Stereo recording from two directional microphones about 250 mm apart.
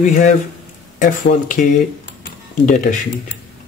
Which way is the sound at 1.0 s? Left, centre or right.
Left.